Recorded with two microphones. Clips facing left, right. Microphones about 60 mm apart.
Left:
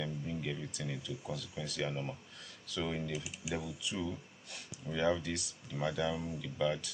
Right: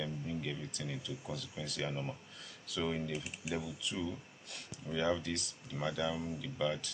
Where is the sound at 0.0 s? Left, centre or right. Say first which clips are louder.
Even; centre.